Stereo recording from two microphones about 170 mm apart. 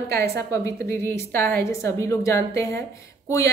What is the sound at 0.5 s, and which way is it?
A woman's voice, 15° left (ahead or behind).